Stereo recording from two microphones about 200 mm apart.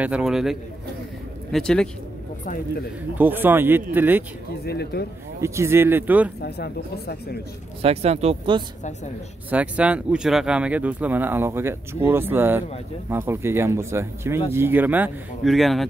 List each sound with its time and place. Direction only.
0.0 s speech: 5° right (ahead or behind)
3.2 s speech: 10° right (ahead or behind)
4.6 s speech: 55° left (ahead or behind)
5.4 s speech: 15° right (ahead or behind)
6.4 s speech: 55° left (ahead or behind)
7.8 s speech: 30° right (ahead or behind)
9.5 s speech: 5° right (ahead or behind)